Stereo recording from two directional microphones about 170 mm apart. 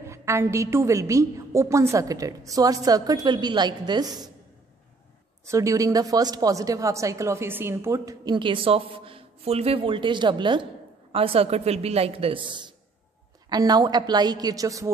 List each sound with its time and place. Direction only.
0.0 s a woman's voice: 15° right (ahead or behind)
5.4 s a woman's voice: 20° right (ahead or behind)